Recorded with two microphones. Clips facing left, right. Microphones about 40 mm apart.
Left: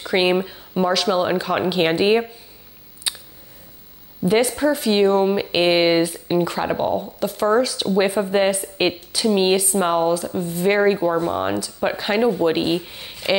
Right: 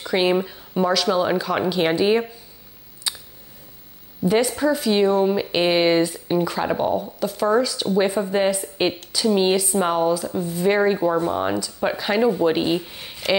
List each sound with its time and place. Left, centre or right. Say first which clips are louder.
0.1 s speech: left 1 dB; left
3.1 s scissors: left 1 dB; left
4.2 s a woman's voice: left 1 dB; centre
4.6 s a woman's voice: left 1 dB; centre
11.0 s speech: even; centre